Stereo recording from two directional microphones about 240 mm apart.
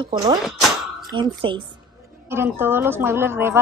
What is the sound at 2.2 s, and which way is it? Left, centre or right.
A woman's voice, centre.